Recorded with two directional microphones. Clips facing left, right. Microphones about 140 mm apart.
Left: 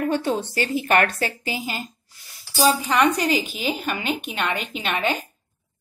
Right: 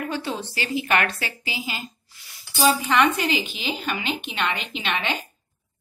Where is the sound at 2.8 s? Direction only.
40° left (ahead or behind).